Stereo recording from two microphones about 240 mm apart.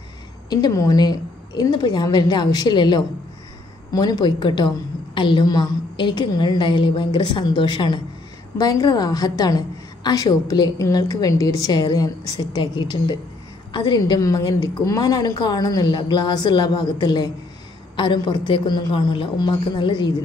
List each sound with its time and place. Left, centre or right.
0.5 s a woman's voice: centre